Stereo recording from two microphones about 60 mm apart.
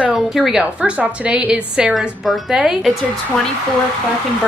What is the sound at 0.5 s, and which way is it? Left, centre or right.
A woman's voice, centre.